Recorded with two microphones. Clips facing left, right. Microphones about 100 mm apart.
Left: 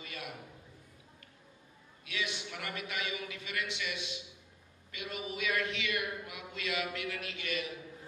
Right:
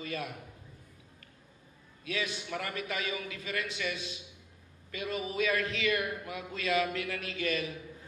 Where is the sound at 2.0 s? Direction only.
40° right (ahead or behind).